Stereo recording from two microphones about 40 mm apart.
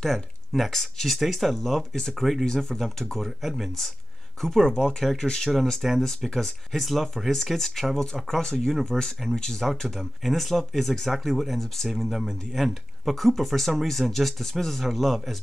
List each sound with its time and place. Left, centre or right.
0.0 s speech: centre
3.3 s speech: centre
4.4 s speech: centre
5.5 s speech: centre
8.0 s speech: centre
9.7 s speech: centre
11.9 s speech: centre